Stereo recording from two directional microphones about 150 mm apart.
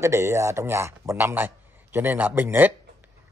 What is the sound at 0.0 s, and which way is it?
A man's voice, 20° right (ahead or behind).